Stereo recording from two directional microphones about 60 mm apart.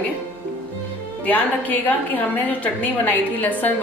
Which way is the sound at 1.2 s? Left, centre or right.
Left.